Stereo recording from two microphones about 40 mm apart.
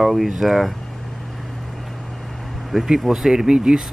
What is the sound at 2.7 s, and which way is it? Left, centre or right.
Speech, centre.